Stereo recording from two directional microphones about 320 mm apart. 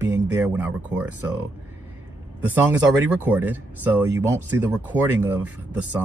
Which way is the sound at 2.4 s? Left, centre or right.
Centre.